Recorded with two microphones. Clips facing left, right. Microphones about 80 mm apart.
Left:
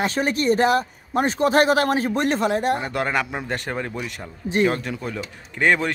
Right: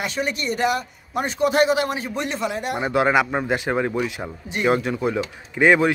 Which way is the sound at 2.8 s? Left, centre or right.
Centre.